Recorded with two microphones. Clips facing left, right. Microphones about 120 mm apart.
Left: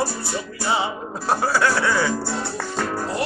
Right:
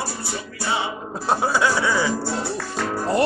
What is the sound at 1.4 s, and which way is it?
Speech, 15° right (ahead or behind).